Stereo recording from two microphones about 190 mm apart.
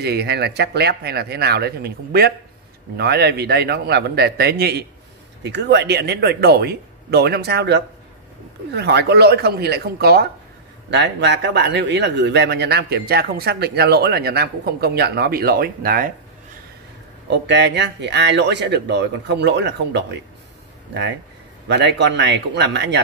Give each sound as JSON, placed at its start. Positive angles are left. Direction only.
{"t": 0.0, "sound": "a man's voice", "side_deg": -60}
{"t": 17.3, "sound": "a man's voice", "side_deg": -65}
{"t": 21.6, "sound": "a man's voice", "side_deg": -65}